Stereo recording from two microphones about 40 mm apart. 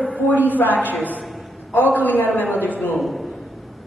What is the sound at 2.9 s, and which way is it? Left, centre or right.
Speech, centre.